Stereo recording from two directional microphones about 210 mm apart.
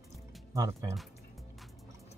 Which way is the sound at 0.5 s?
15° right (ahead or behind).